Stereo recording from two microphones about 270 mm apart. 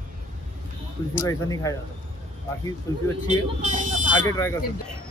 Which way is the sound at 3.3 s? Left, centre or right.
Right.